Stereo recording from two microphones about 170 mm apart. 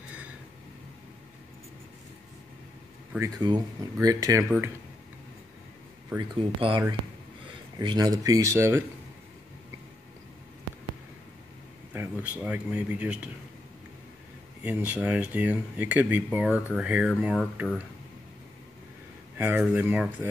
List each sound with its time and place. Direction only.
3.2 s speech: 25° right (ahead or behind)
6.1 s speech: 30° right (ahead or behind)
7.8 s speech: 25° right (ahead or behind)
11.9 s speech: 10° right (ahead or behind)
14.6 s speech: 10° right (ahead or behind)
19.3 s speech: 10° right (ahead or behind)